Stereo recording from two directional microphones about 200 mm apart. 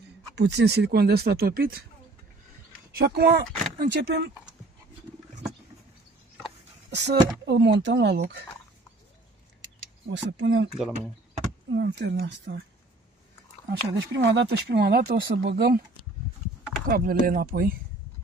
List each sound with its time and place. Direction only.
0.4 s speech: 60° right (ahead or behind)
2.9 s speech: 50° right (ahead or behind)
6.9 s speech: 60° right (ahead or behind)
10.0 s speech: 60° right (ahead or behind)
11.7 s speech: 60° right (ahead or behind)
13.7 s speech: 55° right (ahead or behind)
16.8 s speech: 45° right (ahead or behind)